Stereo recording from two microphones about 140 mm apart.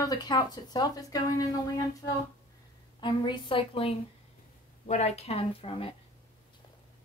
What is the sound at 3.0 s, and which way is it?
Speech, 35° left (ahead or behind).